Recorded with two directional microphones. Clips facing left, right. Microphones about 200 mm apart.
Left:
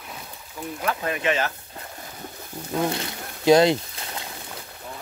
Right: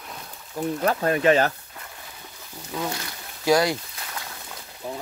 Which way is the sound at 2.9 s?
25° left (ahead or behind).